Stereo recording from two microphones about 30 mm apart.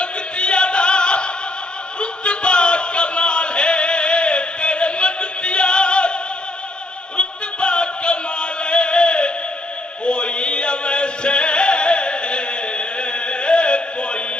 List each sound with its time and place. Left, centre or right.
0.0 s music: left
2.0 s a sound: left
7.2 s music: left